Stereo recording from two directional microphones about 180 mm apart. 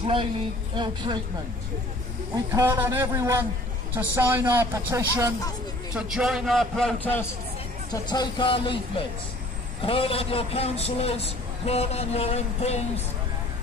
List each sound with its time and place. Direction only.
0.0 s a woman's voice: 30° right (ahead or behind)
2.3 s a man's voice: 15° right (ahead or behind)
5.9 s a man's voice: 5° right (ahead or behind)
7.9 s a man's voice: 25° left (ahead or behind)